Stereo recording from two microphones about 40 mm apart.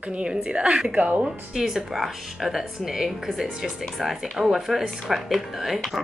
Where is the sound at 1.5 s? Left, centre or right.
Centre.